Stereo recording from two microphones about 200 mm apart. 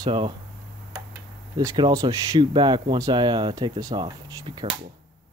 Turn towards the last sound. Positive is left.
turn(degrees=-20)  # may be behind; listen again after turning